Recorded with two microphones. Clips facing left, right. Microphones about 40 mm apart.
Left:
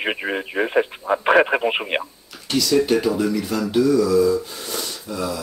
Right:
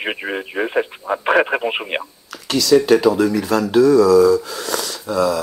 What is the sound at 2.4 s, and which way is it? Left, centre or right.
Speech, right.